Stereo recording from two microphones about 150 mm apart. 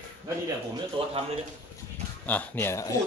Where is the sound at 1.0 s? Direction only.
35° right (ahead or behind).